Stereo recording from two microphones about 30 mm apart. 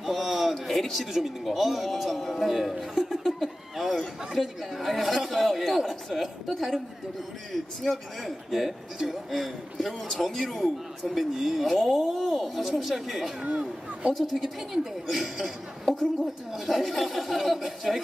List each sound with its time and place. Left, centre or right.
0.0 s a sound: centre
1.1 s speech: centre
8.9 s speech: centre
9.3 s speech: centre
9.9 s speech: centre
11.1 s speech: centre
15.8 s a sound: centre
16.5 s speech: centre